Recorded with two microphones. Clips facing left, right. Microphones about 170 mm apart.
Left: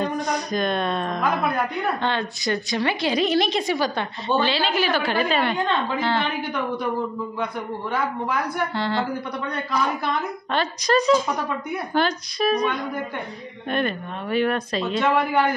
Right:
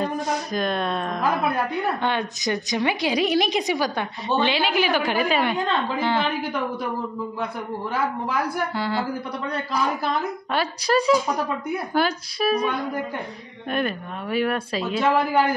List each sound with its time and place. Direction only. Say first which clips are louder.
0.0 s speech: left 1 dB; 5° right (ahead or behind)
2.0 s a woman's voice: even; 15° right (ahead or behind)
7.9 s a woman's voice: left 1 dB; 5° right (ahead or behind)
9.5 s a man's voice: even; 35° right (ahead or behind)
10.5 s a woman's voice: left 1 dB; 10° right (ahead or behind)